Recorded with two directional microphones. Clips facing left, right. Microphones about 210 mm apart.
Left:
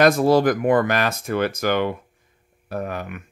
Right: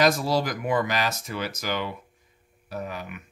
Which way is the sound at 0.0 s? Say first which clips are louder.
Left 7 dB; 55° left (ahead or behind).